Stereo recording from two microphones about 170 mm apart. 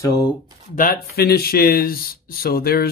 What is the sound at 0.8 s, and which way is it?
Speech, 60° left (ahead or behind).